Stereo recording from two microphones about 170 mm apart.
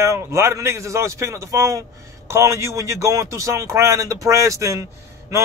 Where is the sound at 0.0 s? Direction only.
15° right (ahead or behind).